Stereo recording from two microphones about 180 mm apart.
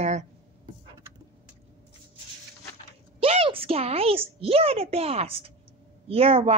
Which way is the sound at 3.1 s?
30° right (ahead or behind).